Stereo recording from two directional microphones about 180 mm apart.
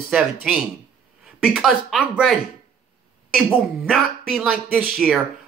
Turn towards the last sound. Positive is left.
turn(degrees=-5)  # may be behind; listen again after turning